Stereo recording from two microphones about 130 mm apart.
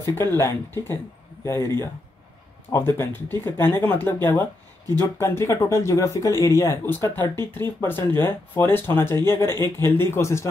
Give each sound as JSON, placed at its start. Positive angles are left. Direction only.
{"t": 0.0, "sound": "speech", "side_deg": 20}